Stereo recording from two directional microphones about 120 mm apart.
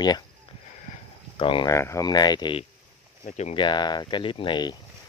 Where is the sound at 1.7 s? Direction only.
25° left (ahead or behind); by 4.8 s 40° left (ahead or behind).